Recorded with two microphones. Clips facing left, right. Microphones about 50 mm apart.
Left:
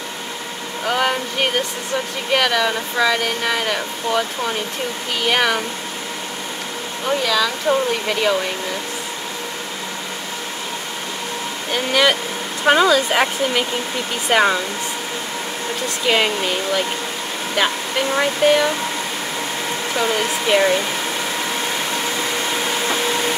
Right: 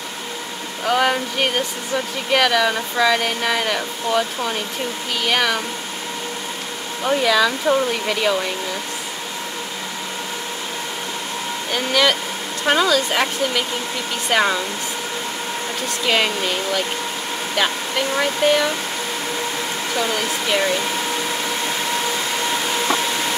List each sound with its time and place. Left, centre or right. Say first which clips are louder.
0.8 s speech: right 1 dB; centre
7.1 s speech: right 2 dB; centre
8.1 s speech: left 1 dB; centre
11.7 s speech: left 1 dB; centre
16.1 s speech: left 2 dB; centre
20.0 s speech: left 2 dB; centre